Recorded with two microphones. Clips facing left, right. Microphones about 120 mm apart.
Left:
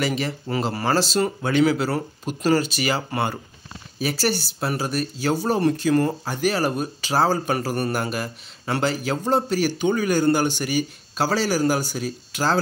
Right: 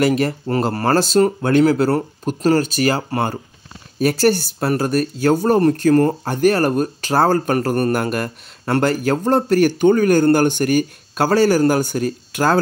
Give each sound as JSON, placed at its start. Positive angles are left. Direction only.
{"t": 0.0, "sound": "speech", "side_deg": -50}